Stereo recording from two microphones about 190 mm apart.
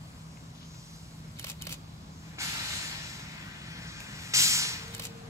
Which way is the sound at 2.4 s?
15° right (ahead or behind).